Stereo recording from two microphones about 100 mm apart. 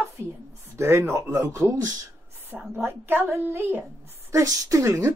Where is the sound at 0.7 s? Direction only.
25° right (ahead or behind).